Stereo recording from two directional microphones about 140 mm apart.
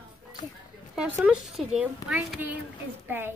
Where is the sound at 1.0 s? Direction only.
10° right (ahead or behind).